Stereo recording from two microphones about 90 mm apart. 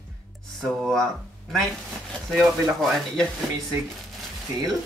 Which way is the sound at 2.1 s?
Centre (ahead or behind).